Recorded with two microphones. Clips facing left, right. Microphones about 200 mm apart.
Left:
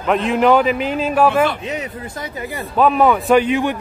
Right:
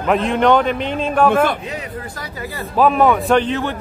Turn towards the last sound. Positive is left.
turn(degrees=15)  # may be behind; listen again after turning